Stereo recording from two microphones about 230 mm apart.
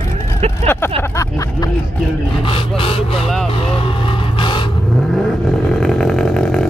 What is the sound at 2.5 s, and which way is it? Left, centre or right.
Speech, left.